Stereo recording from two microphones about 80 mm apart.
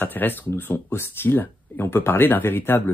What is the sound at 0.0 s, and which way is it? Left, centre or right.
Speech, left.